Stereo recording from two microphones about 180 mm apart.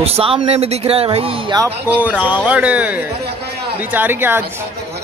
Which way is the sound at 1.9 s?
5° right (ahead or behind).